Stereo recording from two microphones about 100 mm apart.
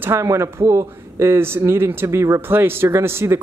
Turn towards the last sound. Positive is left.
turn(degrees=-25)  # may be behind; listen again after turning